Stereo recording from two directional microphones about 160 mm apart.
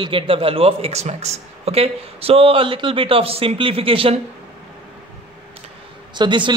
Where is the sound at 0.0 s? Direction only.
35° right (ahead or behind).